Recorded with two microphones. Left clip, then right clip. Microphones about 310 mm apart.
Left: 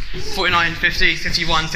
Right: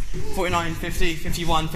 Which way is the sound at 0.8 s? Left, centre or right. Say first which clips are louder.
Left 11 dB; right.